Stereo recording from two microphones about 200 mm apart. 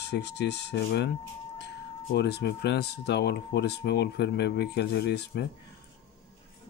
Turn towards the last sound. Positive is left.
turn(degrees=55)  # may be behind; listen again after turning